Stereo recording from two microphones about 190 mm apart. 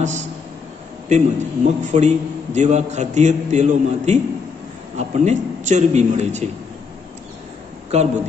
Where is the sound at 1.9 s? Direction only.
35° right (ahead or behind).